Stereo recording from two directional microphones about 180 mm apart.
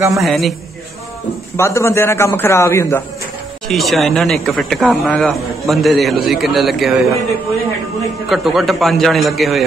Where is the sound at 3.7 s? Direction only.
Centre (ahead or behind).